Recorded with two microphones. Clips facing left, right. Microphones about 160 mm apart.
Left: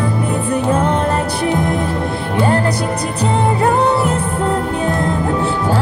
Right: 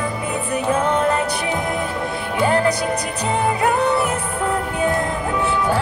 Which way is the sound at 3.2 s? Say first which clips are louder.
Left 4 dB; 30° left (ahead or behind).